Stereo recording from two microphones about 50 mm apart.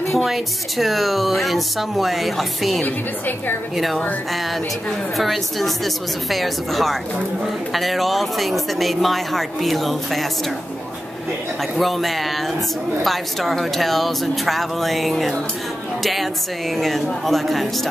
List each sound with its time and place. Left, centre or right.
0.1 s speech: centre
2.8 s a woman's voice: left
3.7 s speech: centre
5.1 s speech: centre
11.7 s speech: centre